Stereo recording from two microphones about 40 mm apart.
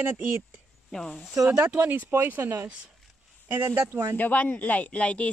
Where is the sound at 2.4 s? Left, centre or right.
Right.